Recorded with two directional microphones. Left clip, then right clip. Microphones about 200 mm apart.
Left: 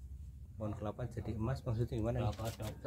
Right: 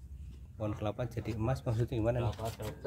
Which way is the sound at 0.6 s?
20° right (ahead or behind).